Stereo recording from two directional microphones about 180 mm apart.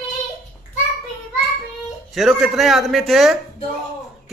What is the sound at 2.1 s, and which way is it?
A man's voice, centre (ahead or behind).